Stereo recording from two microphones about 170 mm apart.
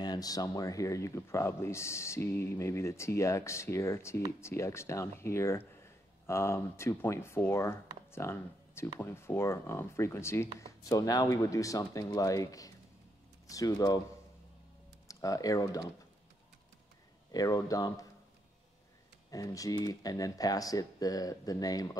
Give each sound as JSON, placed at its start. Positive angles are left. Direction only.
{"t": 0.0, "sound": "speech", "side_deg": 25}
{"t": 15.0, "sound": "speech", "side_deg": 20}
{"t": 17.3, "sound": "speech", "side_deg": 20}
{"t": 19.3, "sound": "speech", "side_deg": 20}